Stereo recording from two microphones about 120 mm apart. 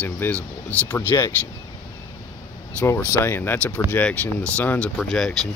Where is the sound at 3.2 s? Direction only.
20° left (ahead or behind); by 5.3 s 5° left (ahead or behind).